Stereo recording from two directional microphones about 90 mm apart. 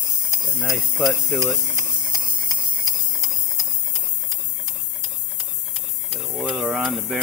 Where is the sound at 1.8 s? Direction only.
40° right (ahead or behind).